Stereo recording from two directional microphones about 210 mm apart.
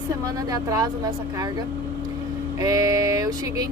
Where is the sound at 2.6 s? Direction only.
15° right (ahead or behind).